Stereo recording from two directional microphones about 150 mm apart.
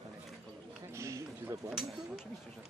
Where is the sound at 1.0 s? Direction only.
20° right (ahead or behind).